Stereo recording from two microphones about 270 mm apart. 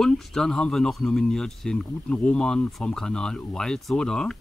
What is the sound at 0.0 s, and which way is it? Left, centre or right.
Speech, centre.